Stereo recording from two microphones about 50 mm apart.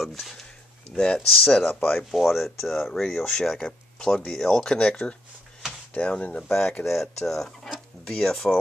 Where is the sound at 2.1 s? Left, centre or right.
Centre.